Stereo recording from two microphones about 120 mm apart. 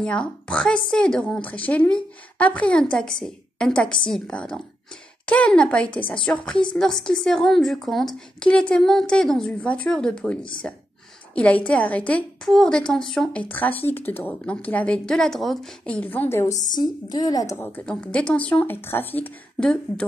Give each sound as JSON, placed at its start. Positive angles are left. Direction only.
{"t": 0.0, "sound": "a woman's voice", "side_deg": 10}
{"t": 15.9, "sound": "a woman's voice", "side_deg": 15}
{"t": 16.7, "sound": "a woman's voice", "side_deg": 35}
{"t": 17.6, "sound": "a woman's voice", "side_deg": 15}